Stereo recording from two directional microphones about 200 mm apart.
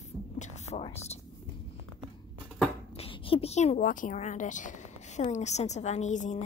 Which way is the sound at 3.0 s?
25° left (ahead or behind).